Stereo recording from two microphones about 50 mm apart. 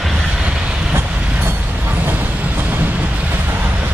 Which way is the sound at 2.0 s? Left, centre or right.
Right.